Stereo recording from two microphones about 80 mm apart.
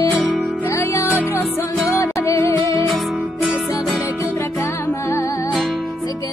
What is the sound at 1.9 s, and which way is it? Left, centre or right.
Music, left.